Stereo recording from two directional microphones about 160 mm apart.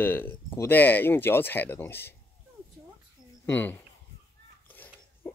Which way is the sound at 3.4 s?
10° left (ahead or behind).